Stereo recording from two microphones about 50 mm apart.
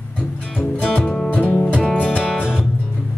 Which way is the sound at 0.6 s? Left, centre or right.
Left.